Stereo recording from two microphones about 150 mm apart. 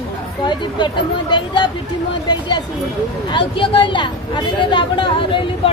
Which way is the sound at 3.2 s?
35° left (ahead or behind).